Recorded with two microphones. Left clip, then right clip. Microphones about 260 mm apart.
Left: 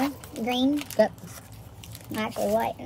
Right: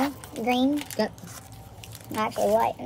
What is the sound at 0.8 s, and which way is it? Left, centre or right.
Speech, centre.